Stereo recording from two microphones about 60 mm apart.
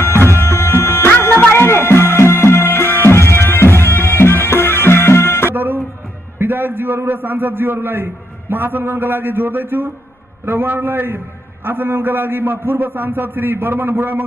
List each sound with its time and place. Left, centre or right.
0.0 s music: left
5.5 s music: right
6.3 s a man's voice: right